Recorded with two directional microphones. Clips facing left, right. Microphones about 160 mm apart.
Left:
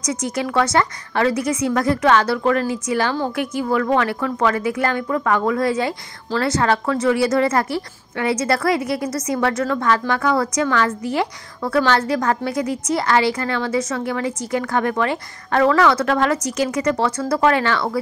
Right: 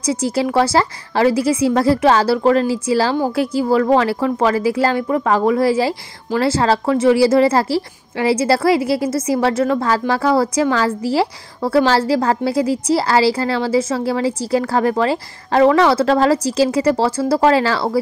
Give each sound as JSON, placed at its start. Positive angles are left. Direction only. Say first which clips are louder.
{"t": 0.0, "sound": "a woman's voice", "louder": "right 5 dB", "side_deg": -30}